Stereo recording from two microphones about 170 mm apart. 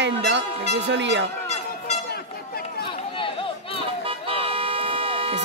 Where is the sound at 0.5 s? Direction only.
35° right (ahead or behind).